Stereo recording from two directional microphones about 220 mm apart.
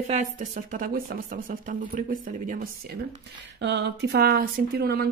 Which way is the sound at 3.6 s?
50° right (ahead or behind).